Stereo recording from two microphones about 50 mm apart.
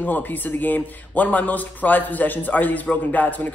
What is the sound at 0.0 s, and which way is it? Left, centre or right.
A man's voice, left.